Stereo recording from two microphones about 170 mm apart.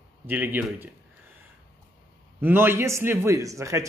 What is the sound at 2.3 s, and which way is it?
Speech, 15° right (ahead or behind).